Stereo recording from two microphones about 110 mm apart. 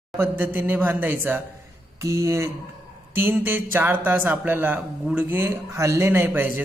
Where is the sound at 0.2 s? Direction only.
20° right (ahead or behind).